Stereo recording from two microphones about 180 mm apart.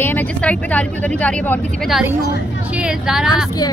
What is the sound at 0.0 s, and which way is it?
Speech, 10° left (ahead or behind).